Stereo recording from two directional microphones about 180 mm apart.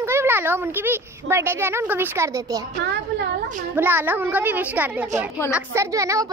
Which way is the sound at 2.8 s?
75° right (ahead or behind).